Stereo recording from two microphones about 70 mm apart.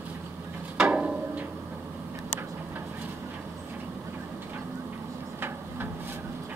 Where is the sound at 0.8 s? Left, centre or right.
Centre.